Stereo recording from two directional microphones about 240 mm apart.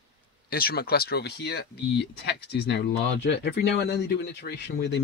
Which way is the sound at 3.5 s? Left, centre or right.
Left.